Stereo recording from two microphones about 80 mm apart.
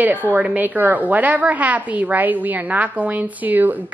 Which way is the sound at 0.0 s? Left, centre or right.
Right.